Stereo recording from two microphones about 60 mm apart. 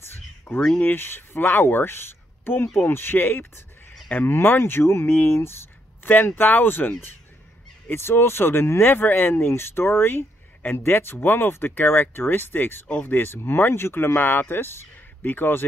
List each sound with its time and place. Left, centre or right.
0.0 s a sound: left
0.7 s speech: left
5.1 s speech: left
7.9 s speech: left